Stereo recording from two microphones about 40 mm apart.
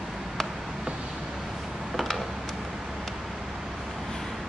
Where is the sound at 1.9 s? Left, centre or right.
Centre.